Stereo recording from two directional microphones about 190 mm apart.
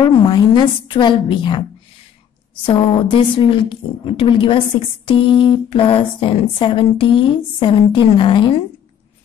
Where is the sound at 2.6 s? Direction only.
25° left (ahead or behind).